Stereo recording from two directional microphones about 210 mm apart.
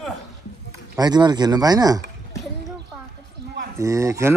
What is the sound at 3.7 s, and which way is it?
Speech, 15° right (ahead or behind).